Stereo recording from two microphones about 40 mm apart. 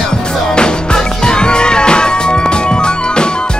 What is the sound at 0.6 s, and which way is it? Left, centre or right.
Music, left.